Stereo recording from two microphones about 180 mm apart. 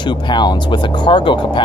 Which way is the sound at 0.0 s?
25° left (ahead or behind).